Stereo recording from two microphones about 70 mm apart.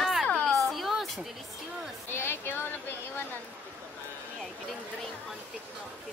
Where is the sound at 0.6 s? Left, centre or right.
Centre.